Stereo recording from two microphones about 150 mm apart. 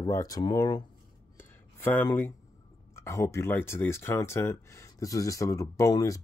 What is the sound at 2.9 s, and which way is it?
Speech, 20° left (ahead or behind).